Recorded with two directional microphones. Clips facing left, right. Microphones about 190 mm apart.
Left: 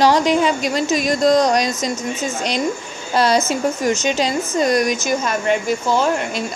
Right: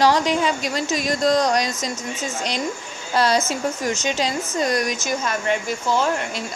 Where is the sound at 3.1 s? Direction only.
15° left (ahead or behind).